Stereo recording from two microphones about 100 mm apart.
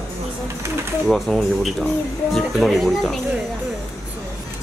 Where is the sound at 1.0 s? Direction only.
Centre (ahead or behind).